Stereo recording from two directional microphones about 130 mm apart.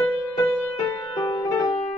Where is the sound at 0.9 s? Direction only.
40° left (ahead or behind).